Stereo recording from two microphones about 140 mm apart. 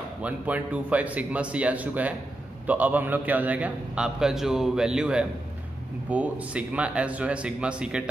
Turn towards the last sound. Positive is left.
turn(degrees=-5)  # may be behind; listen again after turning